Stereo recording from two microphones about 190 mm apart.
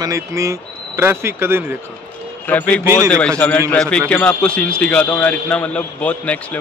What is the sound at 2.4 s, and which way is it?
Speech, 10° left (ahead or behind).